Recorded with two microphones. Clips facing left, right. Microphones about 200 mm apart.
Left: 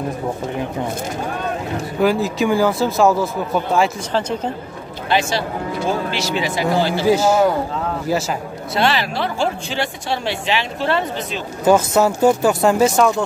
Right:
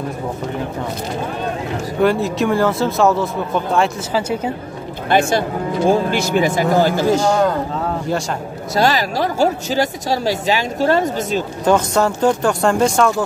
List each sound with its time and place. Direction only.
2.0 s speech: centre (ahead or behind)
5.9 s speech: 50° right (ahead or behind)
7.1 s speech: 5° left (ahead or behind)
8.7 s speech: 40° right (ahead or behind)
11.6 s speech: 5° left (ahead or behind)